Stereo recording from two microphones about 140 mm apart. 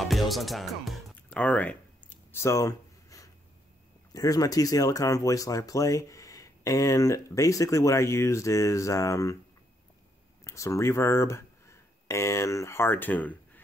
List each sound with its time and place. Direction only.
0.0 s music: centre (ahead or behind); by 3.3 s 25° left (ahead or behind)
4.1 s speech: 25° left (ahead or behind)
10.4 s speech: 20° left (ahead or behind)